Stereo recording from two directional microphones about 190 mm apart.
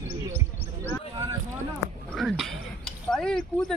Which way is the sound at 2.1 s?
Centre (ahead or behind).